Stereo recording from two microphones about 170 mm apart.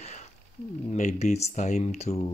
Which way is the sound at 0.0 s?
40° left (ahead or behind).